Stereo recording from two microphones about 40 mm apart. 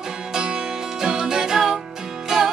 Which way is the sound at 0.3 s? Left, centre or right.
Right.